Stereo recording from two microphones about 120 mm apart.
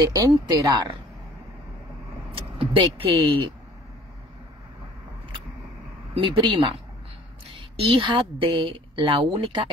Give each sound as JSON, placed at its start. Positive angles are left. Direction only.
{"t": 0.0, "sound": "speech", "side_deg": -30}
{"t": 2.3, "sound": "speech", "side_deg": -50}
{"t": 6.1, "sound": "a woman's voice", "side_deg": -45}
{"t": 7.8, "sound": "a woman's voice", "side_deg": -45}